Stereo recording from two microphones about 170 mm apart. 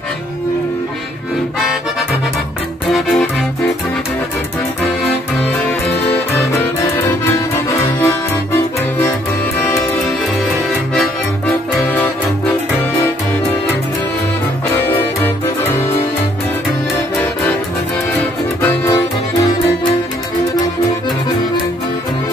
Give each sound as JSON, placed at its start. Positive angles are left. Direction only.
{"t": 6.3, "sound": "accordion", "side_deg": 15}
{"t": 14.8, "sound": "music", "side_deg": 10}
{"t": 18.6, "sound": "music", "side_deg": 15}